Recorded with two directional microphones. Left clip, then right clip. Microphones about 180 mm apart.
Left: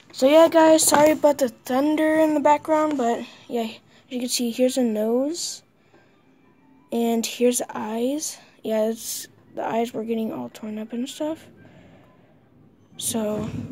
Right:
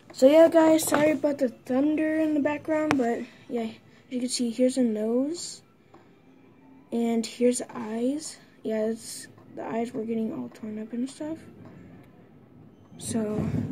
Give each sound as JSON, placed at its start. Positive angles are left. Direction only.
{"t": 0.2, "sound": "speech", "side_deg": 30}
{"t": 6.9, "sound": "speech", "side_deg": 25}
{"t": 12.9, "sound": "a woman's voice", "side_deg": 30}